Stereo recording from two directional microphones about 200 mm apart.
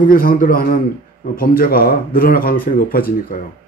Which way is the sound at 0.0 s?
45° left (ahead or behind).